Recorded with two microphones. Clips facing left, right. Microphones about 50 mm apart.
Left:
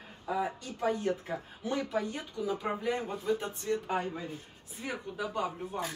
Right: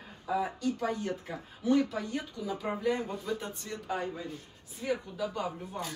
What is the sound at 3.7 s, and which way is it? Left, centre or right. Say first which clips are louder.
Speech: left 4 dB; left.